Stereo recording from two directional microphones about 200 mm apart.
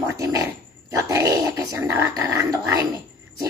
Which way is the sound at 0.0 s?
15° right (ahead or behind).